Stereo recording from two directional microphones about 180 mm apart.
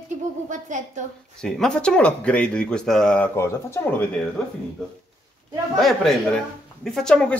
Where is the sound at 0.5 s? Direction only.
45° right (ahead or behind).